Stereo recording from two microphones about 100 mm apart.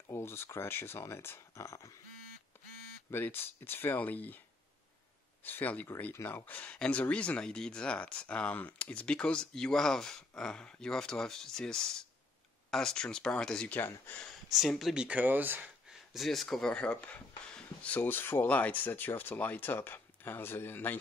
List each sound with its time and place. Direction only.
0.1 s speech: 25° left (ahead or behind)
3.1 s speech: 20° left (ahead or behind)
5.4 s speech: 20° left (ahead or behind)
13.7 s speech: 20° left (ahead or behind)
14.2 s speech: centre (ahead or behind)
15.0 s speech: 15° right (ahead or behind)
15.9 s speech: 5° right (ahead or behind); by 21.0 s 20° left (ahead or behind)